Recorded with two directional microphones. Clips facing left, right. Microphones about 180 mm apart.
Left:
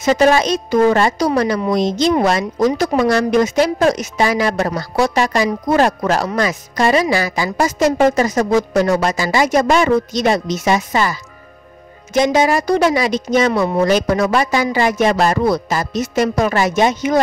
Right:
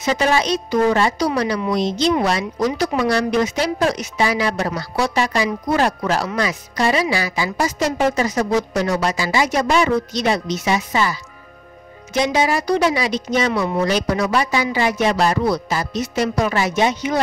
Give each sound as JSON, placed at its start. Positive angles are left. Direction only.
{"t": 0.0, "sound": "a woman's voice", "side_deg": 45}